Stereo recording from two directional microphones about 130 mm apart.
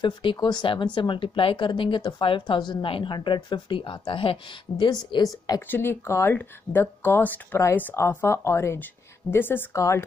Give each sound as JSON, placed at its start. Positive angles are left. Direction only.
{"t": 0.0, "sound": "speech", "side_deg": 40}
{"t": 5.7, "sound": "speech", "side_deg": 15}